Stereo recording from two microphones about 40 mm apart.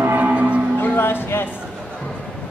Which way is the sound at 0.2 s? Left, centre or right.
Right.